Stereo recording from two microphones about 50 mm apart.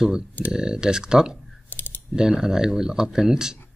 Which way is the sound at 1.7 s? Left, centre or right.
Left.